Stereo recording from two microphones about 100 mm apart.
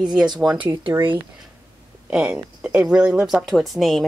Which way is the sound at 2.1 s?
10° right (ahead or behind).